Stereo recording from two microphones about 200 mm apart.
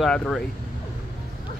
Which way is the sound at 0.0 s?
5° left (ahead or behind).